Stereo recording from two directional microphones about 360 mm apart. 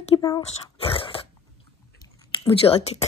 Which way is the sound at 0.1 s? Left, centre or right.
Centre.